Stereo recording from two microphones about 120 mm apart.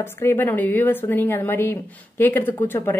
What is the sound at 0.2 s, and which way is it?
Speech, 20° left (ahead or behind).